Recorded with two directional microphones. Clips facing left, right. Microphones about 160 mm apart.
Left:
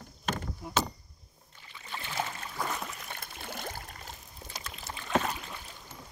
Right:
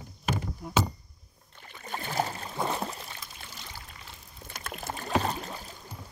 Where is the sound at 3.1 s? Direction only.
55° left (ahead or behind).